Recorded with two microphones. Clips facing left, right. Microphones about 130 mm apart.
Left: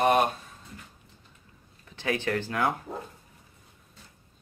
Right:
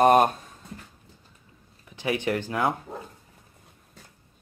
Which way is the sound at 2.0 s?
15° right (ahead or behind).